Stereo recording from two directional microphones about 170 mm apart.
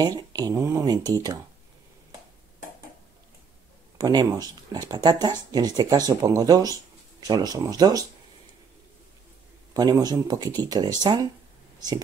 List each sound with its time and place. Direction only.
0.0 s speech: 20° right (ahead or behind)
4.0 s speech: 20° right (ahead or behind)
9.8 s speech: 25° right (ahead or behind)